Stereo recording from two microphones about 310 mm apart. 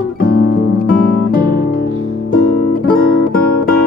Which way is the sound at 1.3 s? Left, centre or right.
Left.